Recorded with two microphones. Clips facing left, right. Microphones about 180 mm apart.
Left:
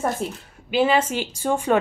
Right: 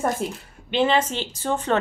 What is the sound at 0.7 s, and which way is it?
Speech, 10° left (ahead or behind).